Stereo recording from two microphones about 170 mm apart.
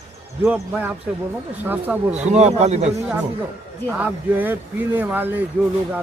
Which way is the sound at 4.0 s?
10° right (ahead or behind).